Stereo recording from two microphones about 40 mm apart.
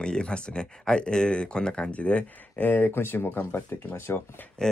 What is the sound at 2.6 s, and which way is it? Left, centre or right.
Speech, left.